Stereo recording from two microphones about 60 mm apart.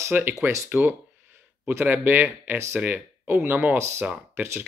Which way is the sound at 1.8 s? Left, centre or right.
Right.